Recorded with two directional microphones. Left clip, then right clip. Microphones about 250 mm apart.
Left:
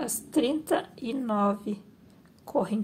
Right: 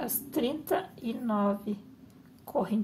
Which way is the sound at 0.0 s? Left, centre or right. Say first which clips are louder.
Left 4 dB; centre.